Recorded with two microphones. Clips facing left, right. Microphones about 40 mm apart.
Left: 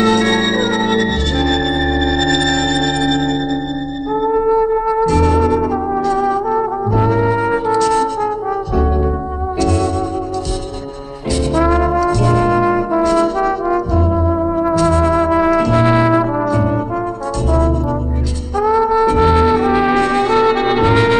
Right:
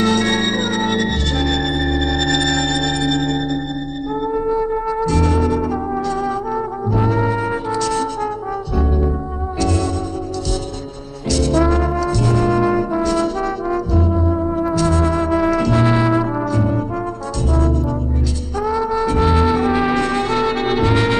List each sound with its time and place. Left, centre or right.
0.0 s music: left
1.8 s music: left
4.4 s music: centre
5.0 s music: left
6.9 s brass instrument: left
7.3 s music: left
9.6 s music: left
11.5 s music: centre
11.9 s brass instrument: left
18.6 s brass instrument: left